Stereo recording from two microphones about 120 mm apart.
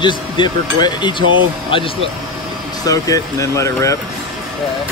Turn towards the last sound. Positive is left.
turn(degrees=25)  # may be behind; listen again after turning